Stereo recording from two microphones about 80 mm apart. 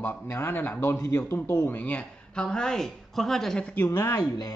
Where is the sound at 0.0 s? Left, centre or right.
Left.